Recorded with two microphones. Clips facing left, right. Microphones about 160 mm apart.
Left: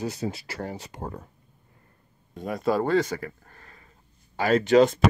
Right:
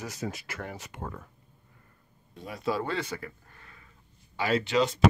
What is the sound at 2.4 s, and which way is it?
Speech, 50° left (ahead or behind).